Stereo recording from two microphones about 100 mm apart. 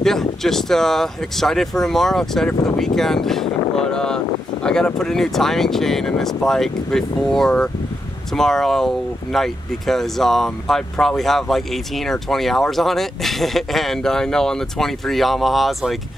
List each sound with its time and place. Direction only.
0.0 s speech: 5° left (ahead or behind)